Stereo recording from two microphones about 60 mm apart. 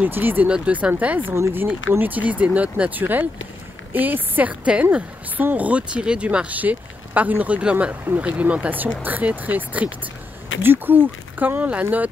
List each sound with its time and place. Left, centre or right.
0.0 s speech: right
0.5 s speech: right